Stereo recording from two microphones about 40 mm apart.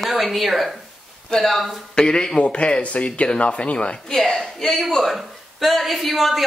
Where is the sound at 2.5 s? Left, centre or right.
Left.